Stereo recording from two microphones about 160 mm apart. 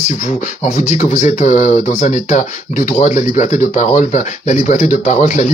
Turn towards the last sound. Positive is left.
turn(degrees=50)  # may be behind; listen again after turning